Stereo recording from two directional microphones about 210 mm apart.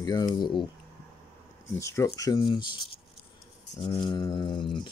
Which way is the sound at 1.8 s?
15° left (ahead or behind).